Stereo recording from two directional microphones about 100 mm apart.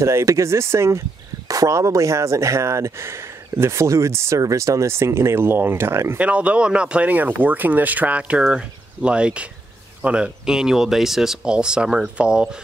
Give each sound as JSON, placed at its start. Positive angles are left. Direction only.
{"t": 0.0, "sound": "speech", "side_deg": -30}
{"t": 6.2, "sound": "speech", "side_deg": -10}